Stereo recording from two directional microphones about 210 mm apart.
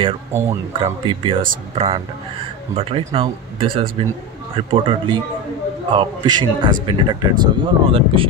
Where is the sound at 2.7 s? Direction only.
30° right (ahead or behind).